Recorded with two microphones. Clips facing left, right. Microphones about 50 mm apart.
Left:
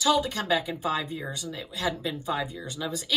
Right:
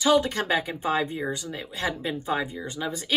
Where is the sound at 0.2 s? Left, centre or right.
Right.